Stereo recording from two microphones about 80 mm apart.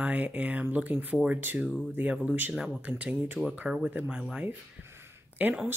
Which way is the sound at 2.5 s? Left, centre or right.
Centre.